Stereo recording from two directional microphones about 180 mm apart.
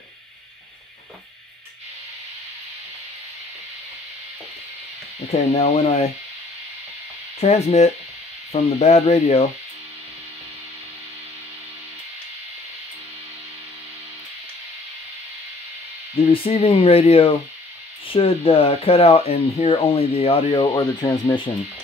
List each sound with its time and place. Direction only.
5.5 s speech: 35° left (ahead or behind)
7.3 s speech: 35° left (ahead or behind)
16.3 s speech: 30° left (ahead or behind)